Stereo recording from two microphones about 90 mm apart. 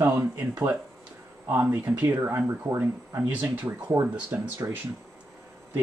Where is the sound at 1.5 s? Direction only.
25° right (ahead or behind).